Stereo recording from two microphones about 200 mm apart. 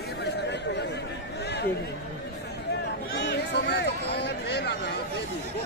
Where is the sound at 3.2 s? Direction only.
60° left (ahead or behind).